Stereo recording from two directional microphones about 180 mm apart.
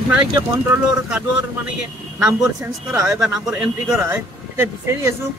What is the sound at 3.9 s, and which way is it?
Speech, 15° right (ahead or behind).